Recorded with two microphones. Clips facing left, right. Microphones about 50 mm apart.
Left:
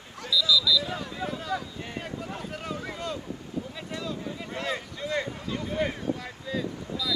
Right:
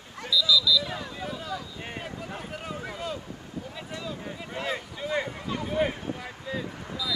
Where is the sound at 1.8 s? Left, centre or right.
Right.